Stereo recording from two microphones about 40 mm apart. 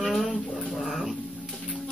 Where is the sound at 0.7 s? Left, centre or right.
Centre.